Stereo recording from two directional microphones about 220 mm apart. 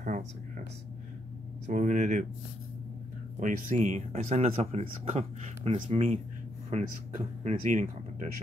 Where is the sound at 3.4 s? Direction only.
35° right (ahead or behind).